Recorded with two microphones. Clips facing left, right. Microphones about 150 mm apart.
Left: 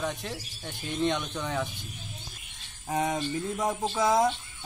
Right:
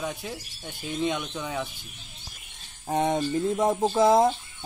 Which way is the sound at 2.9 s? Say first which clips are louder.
Right 4 dB; 30° right (ahead or behind).